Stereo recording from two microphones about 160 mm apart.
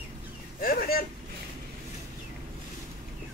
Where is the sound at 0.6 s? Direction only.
65° left (ahead or behind).